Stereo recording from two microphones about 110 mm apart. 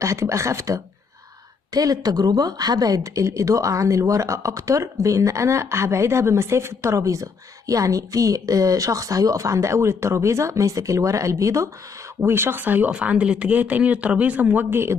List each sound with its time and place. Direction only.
0.0 s speech: 25° right (ahead or behind)